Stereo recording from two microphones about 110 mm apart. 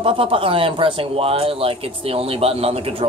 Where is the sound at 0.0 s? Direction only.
55° right (ahead or behind).